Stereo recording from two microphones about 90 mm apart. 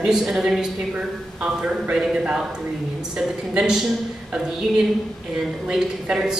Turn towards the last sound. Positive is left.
turn(degrees=-10)  # may be behind; listen again after turning